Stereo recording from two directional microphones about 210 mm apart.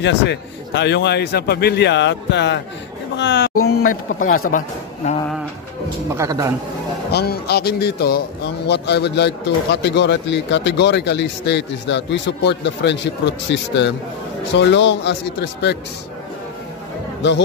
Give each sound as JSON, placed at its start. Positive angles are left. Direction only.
{"t": 0.0, "sound": "speech", "side_deg": 55}
{"t": 3.6, "sound": "speech", "side_deg": 40}
{"t": 6.0, "sound": "a man's voice", "side_deg": -15}
{"t": 7.1, "sound": "speech", "side_deg": 50}
{"t": 17.2, "sound": "speech", "side_deg": 55}